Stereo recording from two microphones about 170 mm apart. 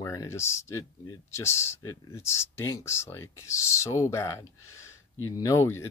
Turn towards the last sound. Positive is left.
turn(degrees=15)  # may be behind; listen again after turning